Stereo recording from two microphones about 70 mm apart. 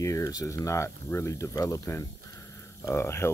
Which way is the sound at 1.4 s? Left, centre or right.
Left.